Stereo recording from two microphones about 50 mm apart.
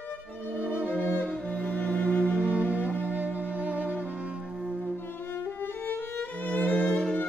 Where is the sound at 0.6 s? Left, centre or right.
Right.